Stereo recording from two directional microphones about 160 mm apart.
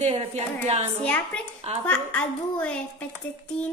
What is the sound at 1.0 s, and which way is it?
A woman's voice, 5° left (ahead or behind).